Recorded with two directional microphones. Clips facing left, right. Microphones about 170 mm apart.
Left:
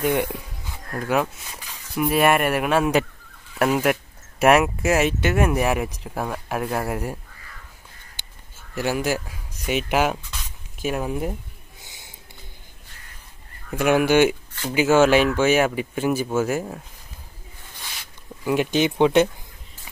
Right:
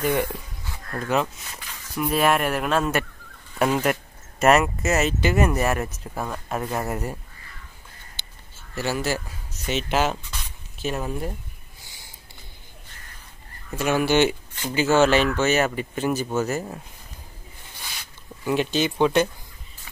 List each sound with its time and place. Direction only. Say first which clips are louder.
0.0 s speech: left 1 dB; 10° left (ahead or behind)
8.7 s speech: left 2 dB; 10° left (ahead or behind)
11.8 s a sound: left 2 dB; 20° left (ahead or behind)
13.7 s speech: left 3 dB; 15° left (ahead or behind)
18.4 s speech: left 2 dB; 10° left (ahead or behind)